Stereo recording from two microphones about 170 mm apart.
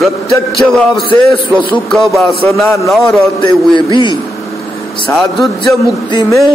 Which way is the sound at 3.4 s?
30° left (ahead or behind).